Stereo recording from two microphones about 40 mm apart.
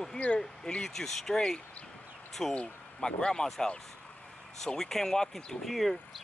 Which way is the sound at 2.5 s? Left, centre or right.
Left.